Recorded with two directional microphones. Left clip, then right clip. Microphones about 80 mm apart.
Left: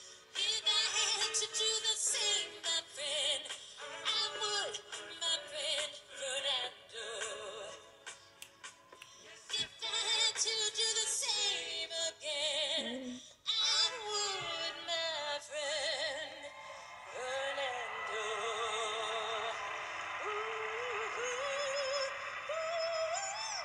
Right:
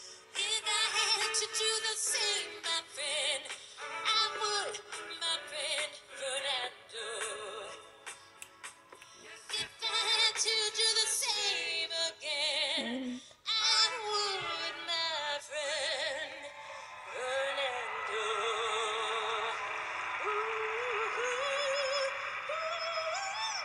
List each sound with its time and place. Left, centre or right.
0.3 s music: right
9.5 s synthetic singing: right
17.1 s music: right